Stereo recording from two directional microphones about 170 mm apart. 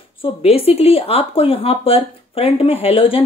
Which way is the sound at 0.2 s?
35° left (ahead or behind).